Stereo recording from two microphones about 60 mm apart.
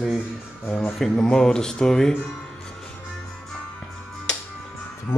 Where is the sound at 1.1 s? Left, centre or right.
Centre.